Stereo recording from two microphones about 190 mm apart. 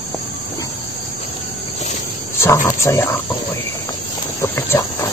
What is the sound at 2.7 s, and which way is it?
Speech, 15° left (ahead or behind).